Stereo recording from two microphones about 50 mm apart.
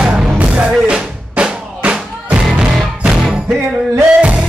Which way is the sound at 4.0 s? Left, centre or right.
Right.